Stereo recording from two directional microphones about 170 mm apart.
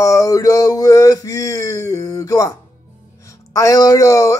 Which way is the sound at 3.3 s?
20° left (ahead or behind).